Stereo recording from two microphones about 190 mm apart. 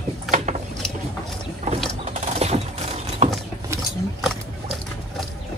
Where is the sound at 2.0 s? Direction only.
40° right (ahead or behind).